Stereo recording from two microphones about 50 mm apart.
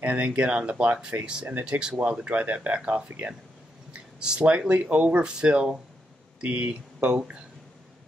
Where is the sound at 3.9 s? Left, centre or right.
Centre.